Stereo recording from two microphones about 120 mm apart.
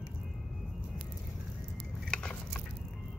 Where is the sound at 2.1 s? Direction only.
10° left (ahead or behind).